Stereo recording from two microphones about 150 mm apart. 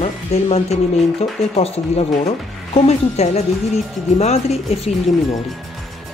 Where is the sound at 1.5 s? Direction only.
40° left (ahead or behind).